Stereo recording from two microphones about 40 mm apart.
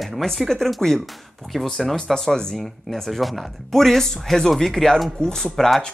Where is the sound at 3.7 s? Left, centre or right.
Centre.